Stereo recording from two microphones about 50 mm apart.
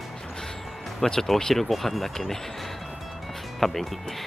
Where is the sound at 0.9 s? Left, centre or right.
Centre.